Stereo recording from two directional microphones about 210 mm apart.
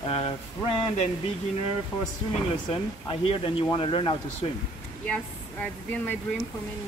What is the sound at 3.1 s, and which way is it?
Speech, 25° left (ahead or behind).